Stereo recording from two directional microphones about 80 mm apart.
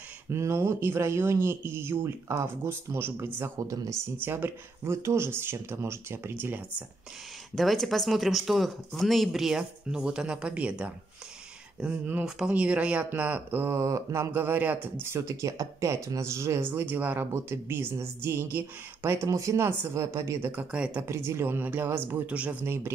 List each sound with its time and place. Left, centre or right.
0.3 s speech: right
3.5 s speech: right
4.2 s speech: right
7.5 s speech: centre; by 13.7 s right
13.7 s speech: right
15.0 s speech: right
19.2 s speech: right
20.4 s speech: centre
21.0 s speech: right; by 22.7 s centre